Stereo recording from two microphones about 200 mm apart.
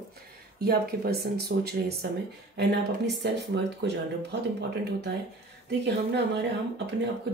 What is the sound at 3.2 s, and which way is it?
Speech, 55° right (ahead or behind).